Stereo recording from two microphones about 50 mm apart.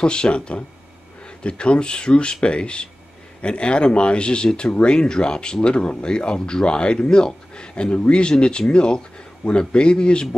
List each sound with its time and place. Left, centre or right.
0.0 s speech: centre